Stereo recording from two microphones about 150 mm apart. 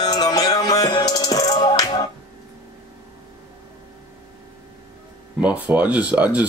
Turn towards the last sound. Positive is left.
turn(degrees=-10)  # may be behind; listen again after turning